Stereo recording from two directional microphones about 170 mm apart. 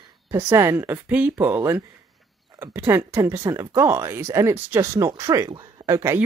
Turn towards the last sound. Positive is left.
turn(degrees=-15)  # may be behind; listen again after turning